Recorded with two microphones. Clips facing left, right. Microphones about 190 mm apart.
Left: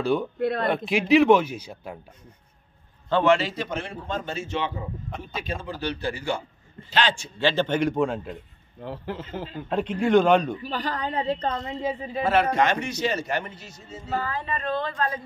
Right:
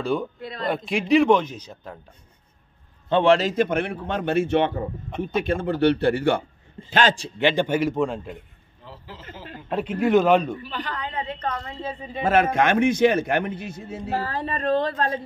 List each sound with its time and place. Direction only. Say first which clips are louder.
0.0 s a man's voice: left 1 dB; centre (ahead or behind)
0.4 s a man's voice: left 9 dB; 60° left (ahead or behind)
0.8 s a man's voice: even; centre (ahead or behind)
3.1 s a man's voice: right 2 dB; 25° right (ahead or behind)
3.3 s a man's voice: right 8 dB; 45° right (ahead or behind)
6.9 s a man's voice: right 4 dB; 45° right (ahead or behind)
7.3 s a man's voice: even; 15° right (ahead or behind); by 8.4 s centre (ahead or behind)
8.8 s speech: left 9 dB; 60° left (ahead or behind)
9.7 s a man's voice: right 1 dB; 5° right (ahead or behind)
10.6 s a woman's voice: left 3 dB; 40° left (ahead or behind)
11.5 s a woman's voice: left 3 dB; 15° left (ahead or behind)
12.2 s a man's voice: right 2 dB; 50° right (ahead or behind)
14.1 s speech: right 1 dB; 35° right (ahead or behind)